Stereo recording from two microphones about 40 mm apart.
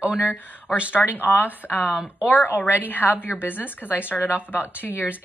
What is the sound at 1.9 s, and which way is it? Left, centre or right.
Speech, right.